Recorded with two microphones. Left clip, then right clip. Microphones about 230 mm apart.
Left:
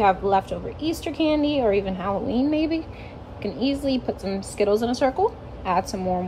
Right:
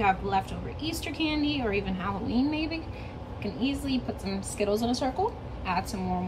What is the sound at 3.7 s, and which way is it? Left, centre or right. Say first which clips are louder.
Speech: left 7 dB; centre.